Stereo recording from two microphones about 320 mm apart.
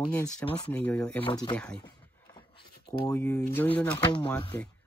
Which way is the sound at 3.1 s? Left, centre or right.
Centre.